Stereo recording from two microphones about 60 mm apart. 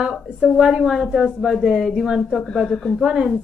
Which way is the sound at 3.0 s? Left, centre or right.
Centre.